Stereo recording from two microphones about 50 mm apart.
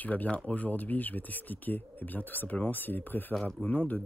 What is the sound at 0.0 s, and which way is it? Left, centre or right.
Speech, left.